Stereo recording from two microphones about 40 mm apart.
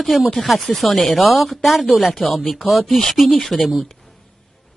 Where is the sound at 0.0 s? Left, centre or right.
Centre.